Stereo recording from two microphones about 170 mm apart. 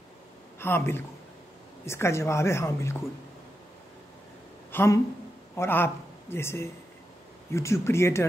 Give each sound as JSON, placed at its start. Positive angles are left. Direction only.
{"t": 0.6, "sound": "a woman's voice", "side_deg": 15}
{"t": 4.7, "sound": "a woman's voice", "side_deg": 15}